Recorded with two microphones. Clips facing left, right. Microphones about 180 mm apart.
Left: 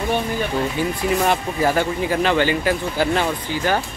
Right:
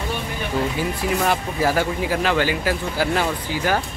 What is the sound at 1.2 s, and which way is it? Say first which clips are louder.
Speech: left 1 dB; 5° right (ahead or behind).